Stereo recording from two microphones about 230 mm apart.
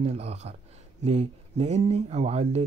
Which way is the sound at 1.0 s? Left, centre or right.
Right.